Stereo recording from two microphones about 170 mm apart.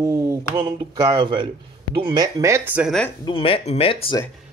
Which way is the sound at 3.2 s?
30° left (ahead or behind).